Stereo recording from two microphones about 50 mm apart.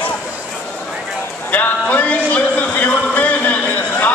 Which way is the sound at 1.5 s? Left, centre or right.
Left.